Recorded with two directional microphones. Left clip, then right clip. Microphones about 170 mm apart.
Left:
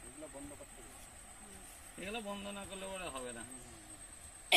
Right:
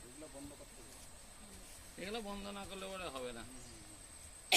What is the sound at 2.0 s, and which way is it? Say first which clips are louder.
Speech: left 1 dB; 40° left (ahead or behind).